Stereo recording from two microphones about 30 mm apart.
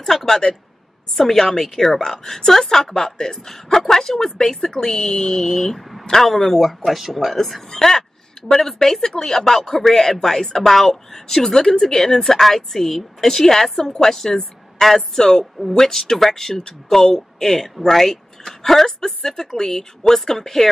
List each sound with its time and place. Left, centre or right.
0.0 s a sound: centre
1.1 s speech: centre
6.8 s speech: centre
8.5 s speech: centre
15.1 s speech: centre